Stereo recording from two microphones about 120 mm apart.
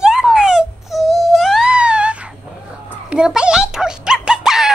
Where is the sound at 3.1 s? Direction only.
5° right (ahead or behind).